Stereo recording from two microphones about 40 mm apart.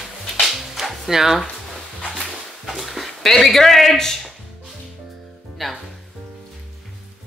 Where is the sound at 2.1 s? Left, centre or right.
Centre.